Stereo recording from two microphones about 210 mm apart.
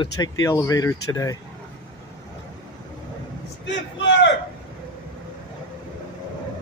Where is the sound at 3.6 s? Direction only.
55° left (ahead or behind).